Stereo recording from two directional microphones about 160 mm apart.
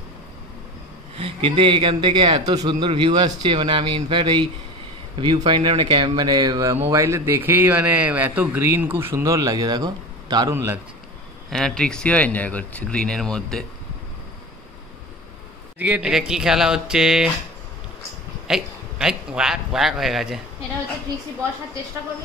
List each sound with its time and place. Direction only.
1.1 s a man's voice: 35° right (ahead or behind)
10.5 s a man's voice: 15° right (ahead or behind)
11.5 s speech: 5° left (ahead or behind)
15.8 s speech: 5° right (ahead or behind)
18.5 s speech: 5° right (ahead or behind)